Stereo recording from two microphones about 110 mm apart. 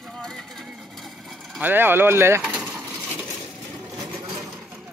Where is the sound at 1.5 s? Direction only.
15° right (ahead or behind).